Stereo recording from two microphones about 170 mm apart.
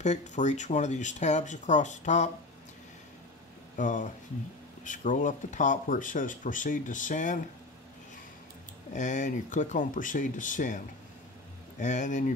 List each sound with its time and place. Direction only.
0.0 s speech: 45° left (ahead or behind)
3.7 s speech: 50° left (ahead or behind)
8.9 s speech: 45° left (ahead or behind)
11.8 s speech: 45° left (ahead or behind)